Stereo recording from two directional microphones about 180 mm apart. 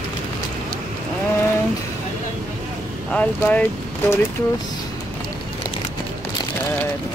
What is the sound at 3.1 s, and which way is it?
Speech, 10° left (ahead or behind).